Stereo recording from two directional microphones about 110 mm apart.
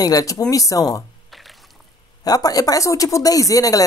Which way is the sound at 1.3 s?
Centre (ahead or behind).